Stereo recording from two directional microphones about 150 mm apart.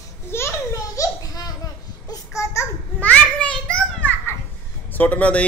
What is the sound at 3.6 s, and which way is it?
Children playing, 10° left (ahead or behind).